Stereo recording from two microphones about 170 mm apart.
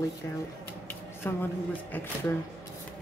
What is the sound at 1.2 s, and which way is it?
Speech, 15° left (ahead or behind).